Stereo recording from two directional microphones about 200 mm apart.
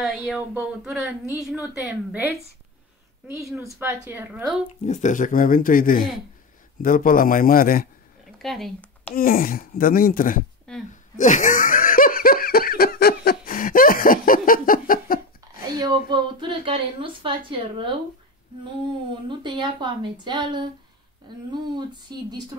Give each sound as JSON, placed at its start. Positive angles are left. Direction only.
{"t": 0.0, "sound": "a woman's voice", "side_deg": 0}
{"t": 4.8, "sound": "speech", "side_deg": 40}
{"t": 8.4, "sound": "speech", "side_deg": 0}
{"t": 9.1, "sound": "speech", "side_deg": 45}
{"t": 10.9, "sound": "laughter", "side_deg": 40}
{"t": 16.1, "sound": "a woman's voice", "side_deg": -25}
{"t": 19.2, "sound": "a woman's voice", "side_deg": -20}